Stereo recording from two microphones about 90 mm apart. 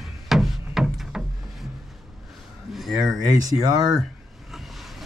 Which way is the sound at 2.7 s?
Centre (ahead or behind).